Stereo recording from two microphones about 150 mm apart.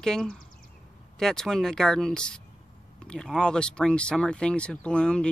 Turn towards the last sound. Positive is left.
turn(degrees=5)  # may be behind; listen again after turning